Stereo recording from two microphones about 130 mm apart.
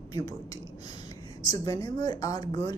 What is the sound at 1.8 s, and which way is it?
Speech, 30° left (ahead or behind).